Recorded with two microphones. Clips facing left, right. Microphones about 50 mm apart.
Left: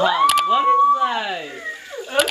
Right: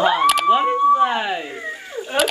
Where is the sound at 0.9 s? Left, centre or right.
Right.